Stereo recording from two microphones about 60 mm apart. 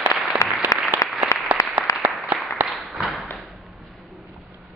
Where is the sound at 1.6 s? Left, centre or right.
Left.